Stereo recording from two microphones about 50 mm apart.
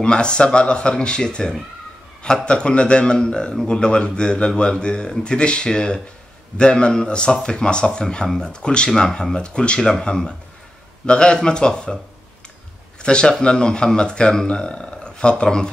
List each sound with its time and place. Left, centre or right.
0.0 s a man's voice: centre
13.0 s speech: centre